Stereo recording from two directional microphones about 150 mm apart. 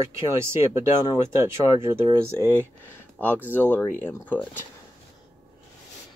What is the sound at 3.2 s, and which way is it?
Speech, 10° left (ahead or behind).